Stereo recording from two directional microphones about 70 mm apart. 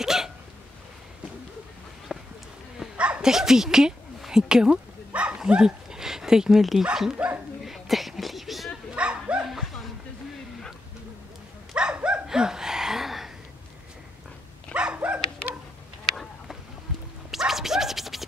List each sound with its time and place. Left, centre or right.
0.0 s hiccup: centre
2.1 s a sound: centre
3.0 s speech: centre
7.6 s a sound: centre
8.9 s dog: centre
9.5 s a sound: centre
11.7 s dog: centre
14.7 s dog: centre
17.3 s scratch: centre